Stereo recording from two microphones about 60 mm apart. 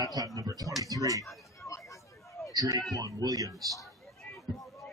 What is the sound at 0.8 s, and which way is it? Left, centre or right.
Speech, right.